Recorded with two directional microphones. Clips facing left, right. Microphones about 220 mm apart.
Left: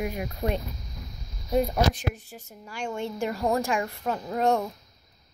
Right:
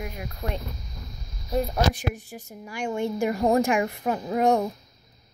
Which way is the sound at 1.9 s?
15° right (ahead or behind).